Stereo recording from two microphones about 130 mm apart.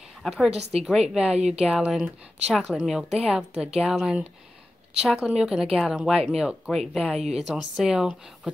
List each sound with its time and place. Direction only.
0.2 s a woman's voice: centre (ahead or behind)
0.6 s a woman's voice: 55° right (ahead or behind)
0.8 s a woman's voice: 5° right (ahead or behind)